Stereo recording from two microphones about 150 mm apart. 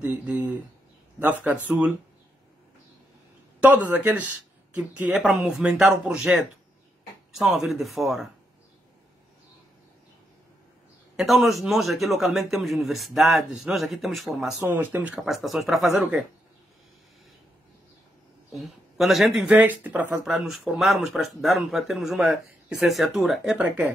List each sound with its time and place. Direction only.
0.0 s speech: 10° right (ahead or behind)
3.6 s speech: 10° right (ahead or behind)
11.1 s speech: centre (ahead or behind)
18.6 s speech: centre (ahead or behind)